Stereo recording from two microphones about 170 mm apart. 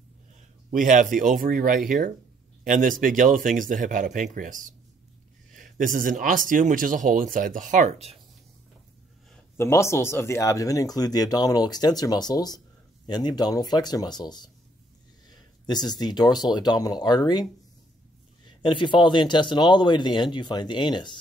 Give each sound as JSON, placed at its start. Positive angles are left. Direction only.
{"t": 0.7, "sound": "speech", "side_deg": -50}
{"t": 9.3, "sound": "speech", "side_deg": 15}